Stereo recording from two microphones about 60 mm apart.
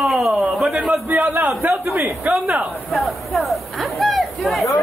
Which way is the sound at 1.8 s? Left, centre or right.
Right.